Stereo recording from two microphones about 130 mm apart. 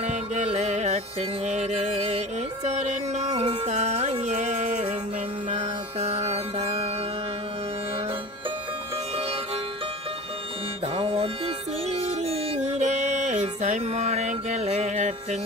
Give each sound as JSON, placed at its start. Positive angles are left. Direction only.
{"t": 0.0, "sound": "music", "side_deg": -65}
{"t": 11.0, "sound": "music", "side_deg": -45}